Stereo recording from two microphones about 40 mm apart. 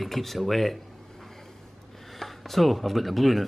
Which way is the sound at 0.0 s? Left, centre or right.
Centre.